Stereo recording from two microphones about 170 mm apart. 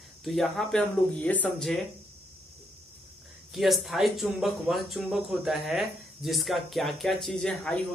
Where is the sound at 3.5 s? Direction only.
Centre (ahead or behind).